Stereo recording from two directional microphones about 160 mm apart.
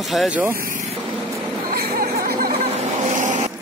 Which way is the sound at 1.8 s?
70° right (ahead or behind).